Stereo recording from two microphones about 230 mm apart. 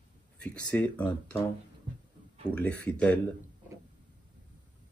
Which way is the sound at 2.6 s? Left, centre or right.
Centre.